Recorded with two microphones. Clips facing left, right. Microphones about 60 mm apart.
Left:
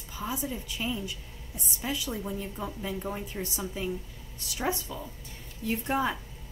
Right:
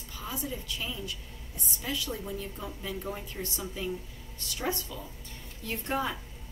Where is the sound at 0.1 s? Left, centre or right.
Centre.